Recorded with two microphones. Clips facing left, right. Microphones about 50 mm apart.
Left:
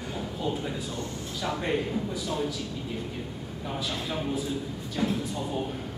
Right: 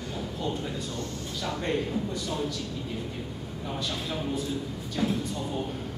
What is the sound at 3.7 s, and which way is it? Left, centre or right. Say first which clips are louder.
A man's voice: left 1 dB; centre.